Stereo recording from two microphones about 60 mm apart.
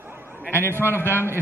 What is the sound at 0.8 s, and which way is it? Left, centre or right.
Speech, left.